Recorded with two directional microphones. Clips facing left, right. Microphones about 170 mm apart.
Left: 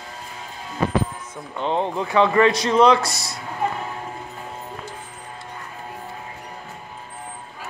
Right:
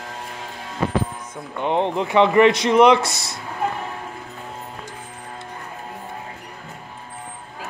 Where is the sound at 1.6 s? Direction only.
20° right (ahead or behind).